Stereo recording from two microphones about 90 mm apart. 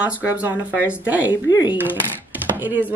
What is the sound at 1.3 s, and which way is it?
Speech, 55° left (ahead or behind).